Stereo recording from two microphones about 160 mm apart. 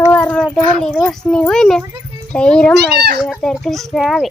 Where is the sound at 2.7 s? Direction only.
90° right.